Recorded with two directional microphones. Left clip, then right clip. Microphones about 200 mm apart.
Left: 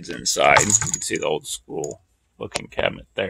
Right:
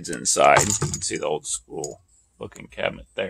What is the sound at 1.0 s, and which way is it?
Speech, 35° left (ahead or behind).